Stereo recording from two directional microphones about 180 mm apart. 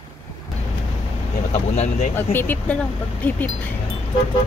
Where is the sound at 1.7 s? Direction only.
40° left (ahead or behind).